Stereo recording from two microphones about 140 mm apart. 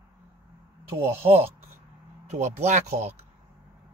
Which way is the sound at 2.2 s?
55° right (ahead or behind).